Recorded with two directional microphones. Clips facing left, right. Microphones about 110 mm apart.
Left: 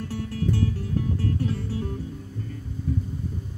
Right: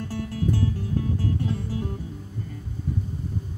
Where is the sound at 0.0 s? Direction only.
15° right (ahead or behind).